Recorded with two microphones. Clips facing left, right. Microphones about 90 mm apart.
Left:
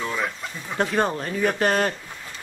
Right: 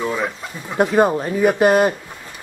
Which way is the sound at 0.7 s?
5° right (ahead or behind).